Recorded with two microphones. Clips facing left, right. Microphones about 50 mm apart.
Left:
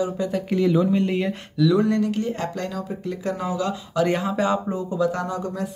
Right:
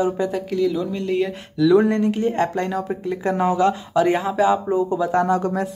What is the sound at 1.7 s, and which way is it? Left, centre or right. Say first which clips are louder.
Speech: right 6 dB; right.